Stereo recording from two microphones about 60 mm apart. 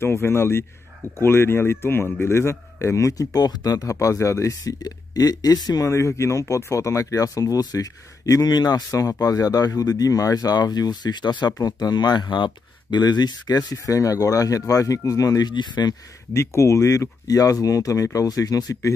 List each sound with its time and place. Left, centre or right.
0.0 s speech: left
3.2 s speech: left
5.9 s speech: left
13.0 s speech: left
16.3 s speech: left